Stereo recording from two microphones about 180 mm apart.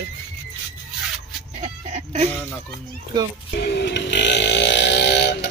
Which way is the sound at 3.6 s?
70° left (ahead or behind).